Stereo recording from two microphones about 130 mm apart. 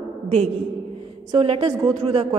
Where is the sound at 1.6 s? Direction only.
25° right (ahead or behind).